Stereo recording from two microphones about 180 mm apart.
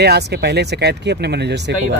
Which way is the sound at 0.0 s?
65° right (ahead or behind).